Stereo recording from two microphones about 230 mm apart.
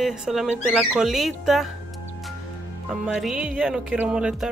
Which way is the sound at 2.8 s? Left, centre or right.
Centre.